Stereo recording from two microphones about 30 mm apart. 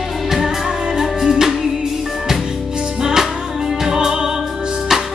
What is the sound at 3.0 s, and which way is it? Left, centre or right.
Music, centre.